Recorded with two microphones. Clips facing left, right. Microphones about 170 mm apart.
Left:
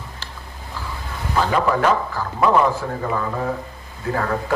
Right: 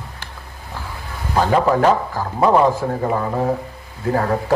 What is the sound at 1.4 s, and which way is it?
Speech, 40° right (ahead or behind).